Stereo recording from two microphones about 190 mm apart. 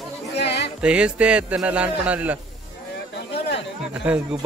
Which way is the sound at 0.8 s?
5° right (ahead or behind).